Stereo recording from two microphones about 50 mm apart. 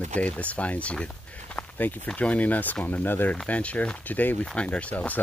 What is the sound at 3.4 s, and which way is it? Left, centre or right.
Speech, left.